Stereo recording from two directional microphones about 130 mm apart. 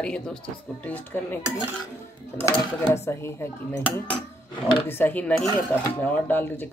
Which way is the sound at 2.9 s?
20° left (ahead or behind).